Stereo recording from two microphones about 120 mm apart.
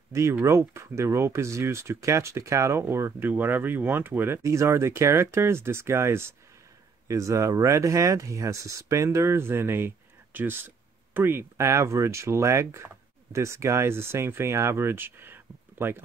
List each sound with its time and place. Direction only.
0.1 s speech: 25° right (ahead or behind)